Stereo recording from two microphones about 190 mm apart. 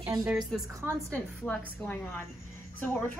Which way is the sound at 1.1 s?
10° left (ahead or behind).